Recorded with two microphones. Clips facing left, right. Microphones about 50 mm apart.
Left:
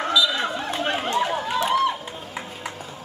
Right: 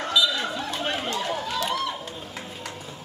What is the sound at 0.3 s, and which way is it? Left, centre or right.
Chatter, left.